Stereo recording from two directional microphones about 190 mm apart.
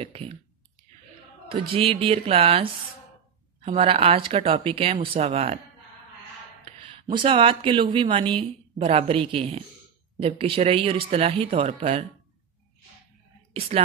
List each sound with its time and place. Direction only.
0.0 s speech: 30° right (ahead or behind)
1.5 s speech: 30° right (ahead or behind)
3.6 s speech: 30° right (ahead or behind)
6.6 s speech: 25° right (ahead or behind)
13.5 s speech: 30° right (ahead or behind)